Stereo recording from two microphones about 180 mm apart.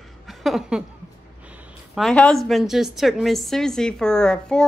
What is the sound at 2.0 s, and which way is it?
A woman's voice, 5° left (ahead or behind).